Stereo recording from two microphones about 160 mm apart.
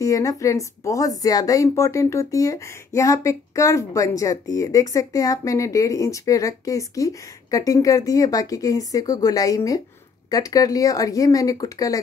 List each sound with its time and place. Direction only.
0.0 s speech: 20° left (ahead or behind)